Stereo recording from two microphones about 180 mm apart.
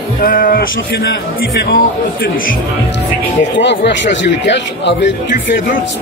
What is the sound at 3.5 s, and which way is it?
Speech, 80° left.